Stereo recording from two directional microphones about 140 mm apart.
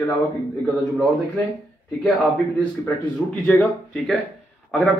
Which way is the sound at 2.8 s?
10° left (ahead or behind).